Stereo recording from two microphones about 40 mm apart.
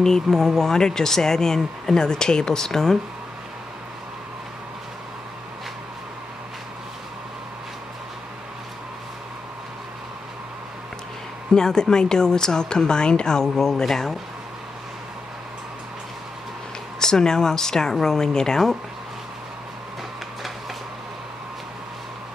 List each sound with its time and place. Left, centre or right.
0.0 s speech: centre
11.5 s speech: centre
17.0 s speech: centre